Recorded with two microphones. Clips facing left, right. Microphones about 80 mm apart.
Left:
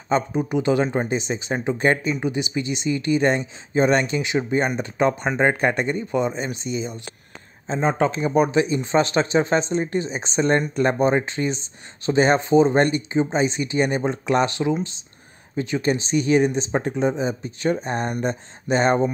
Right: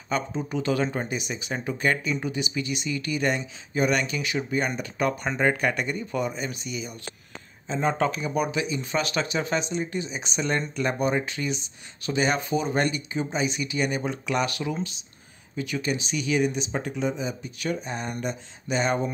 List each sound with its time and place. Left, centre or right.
0.1 s speech: centre; by 7.9 s left
7.9 s speech: left
8.2 s speech: left